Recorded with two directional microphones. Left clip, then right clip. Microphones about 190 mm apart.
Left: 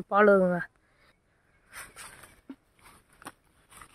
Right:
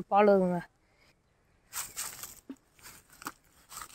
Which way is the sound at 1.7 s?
55° right (ahead or behind).